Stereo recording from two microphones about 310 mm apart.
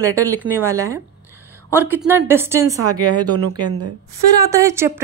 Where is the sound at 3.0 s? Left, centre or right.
Right.